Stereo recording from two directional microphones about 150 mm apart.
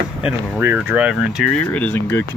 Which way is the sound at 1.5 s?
10° left (ahead or behind).